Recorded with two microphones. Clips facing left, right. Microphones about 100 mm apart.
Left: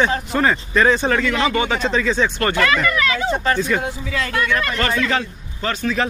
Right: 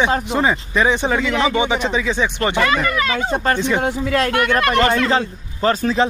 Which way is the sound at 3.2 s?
45° right (ahead or behind).